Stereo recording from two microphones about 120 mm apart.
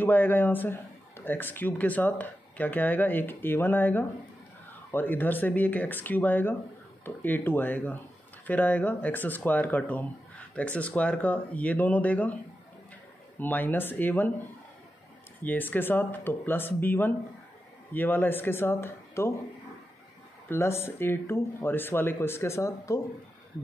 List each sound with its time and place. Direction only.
0.0 s speech: 15° left (ahead or behind)
13.4 s speech: 15° left (ahead or behind)
15.4 s speech: 15° left (ahead or behind)
20.4 s speech: 20° left (ahead or behind)